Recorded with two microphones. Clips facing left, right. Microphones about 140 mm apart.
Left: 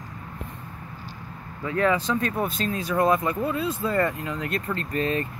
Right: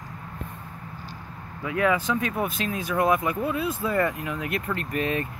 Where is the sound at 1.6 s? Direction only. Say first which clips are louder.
Left 1 dB; 10° right (ahead or behind).